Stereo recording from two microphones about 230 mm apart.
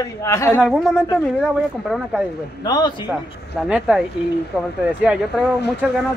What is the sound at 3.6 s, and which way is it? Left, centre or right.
Speech, centre.